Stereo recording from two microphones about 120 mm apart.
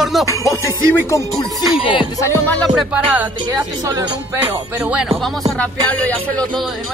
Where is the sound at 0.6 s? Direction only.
25° left (ahead or behind).